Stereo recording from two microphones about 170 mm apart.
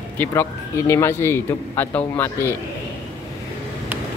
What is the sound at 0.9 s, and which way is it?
A man's voice, 15° left (ahead or behind).